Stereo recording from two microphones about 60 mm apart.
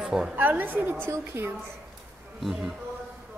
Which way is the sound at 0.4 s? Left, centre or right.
Right.